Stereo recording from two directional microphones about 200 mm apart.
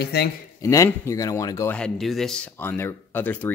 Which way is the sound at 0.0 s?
55° left (ahead or behind).